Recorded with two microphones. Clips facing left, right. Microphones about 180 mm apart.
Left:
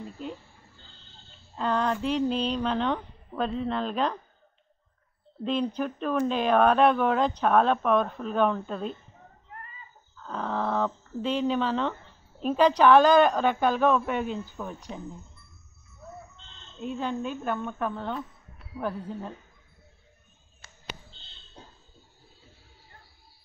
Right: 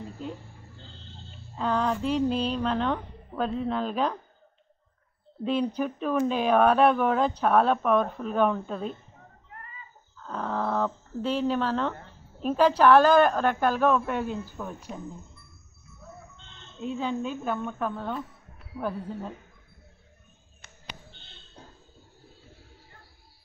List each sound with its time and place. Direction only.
1.6 s speech: 5° right (ahead or behind)
5.4 s speech: 10° right (ahead or behind)
10.1 s speech: centre (ahead or behind)
16.8 s speech: 5° right (ahead or behind)